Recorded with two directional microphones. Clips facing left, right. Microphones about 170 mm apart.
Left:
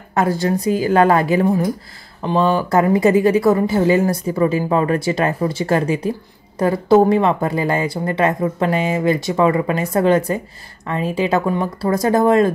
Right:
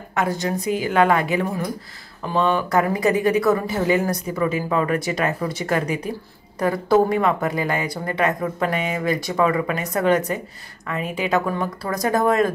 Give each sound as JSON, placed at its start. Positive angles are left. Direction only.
{"t": 0.1, "sound": "speech", "side_deg": 35}